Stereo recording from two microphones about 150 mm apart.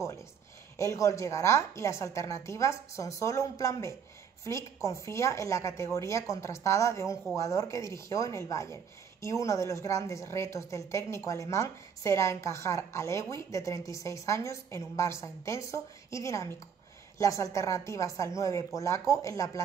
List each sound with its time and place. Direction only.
0.7 s a woman's voice: 20° left (ahead or behind)